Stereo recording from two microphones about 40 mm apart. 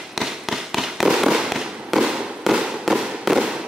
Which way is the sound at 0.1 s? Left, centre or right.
Centre.